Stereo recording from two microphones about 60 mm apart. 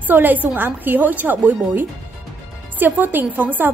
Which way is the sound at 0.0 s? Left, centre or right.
Right.